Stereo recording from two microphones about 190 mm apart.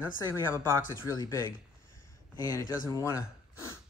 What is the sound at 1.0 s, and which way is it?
Speech, 20° left (ahead or behind).